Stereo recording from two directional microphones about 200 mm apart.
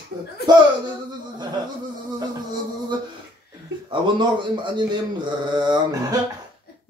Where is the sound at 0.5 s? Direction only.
20° right (ahead or behind).